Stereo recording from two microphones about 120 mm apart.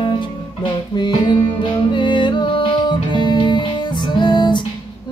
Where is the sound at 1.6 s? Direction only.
40° left (ahead or behind).